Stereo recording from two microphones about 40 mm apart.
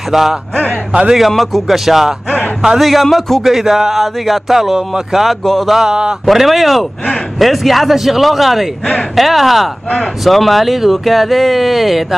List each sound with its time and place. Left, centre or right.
0.1 s speech: centre
2.9 s speech: centre
5.4 s mantra: centre
5.9 s a man's voice: centre
6.2 s speech: centre